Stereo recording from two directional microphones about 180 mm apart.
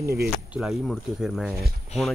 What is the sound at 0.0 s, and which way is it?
Speech, 60° right (ahead or behind).